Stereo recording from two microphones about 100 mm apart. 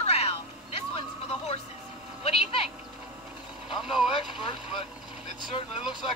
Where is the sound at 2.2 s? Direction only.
75° left (ahead or behind).